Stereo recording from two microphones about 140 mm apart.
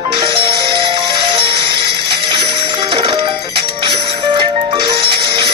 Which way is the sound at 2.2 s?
40° right (ahead or behind).